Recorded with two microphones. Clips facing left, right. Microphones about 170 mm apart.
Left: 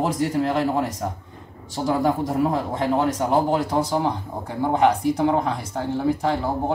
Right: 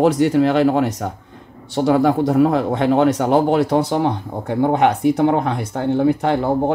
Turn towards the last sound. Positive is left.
turn(degrees=-65)  # may be behind; listen again after turning